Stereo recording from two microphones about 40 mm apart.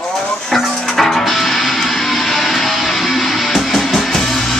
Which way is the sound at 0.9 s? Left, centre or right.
Centre.